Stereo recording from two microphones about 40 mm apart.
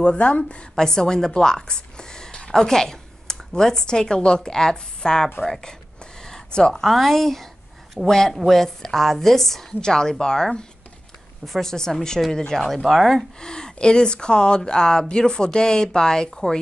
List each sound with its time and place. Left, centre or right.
0.0 s speech: left
0.7 s a woman's voice: centre
6.2 s a sound: centre
6.7 s a woman's voice: centre
13.4 s speech: centre